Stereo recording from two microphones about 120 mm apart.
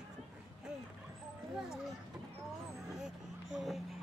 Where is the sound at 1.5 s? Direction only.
5° right (ahead or behind).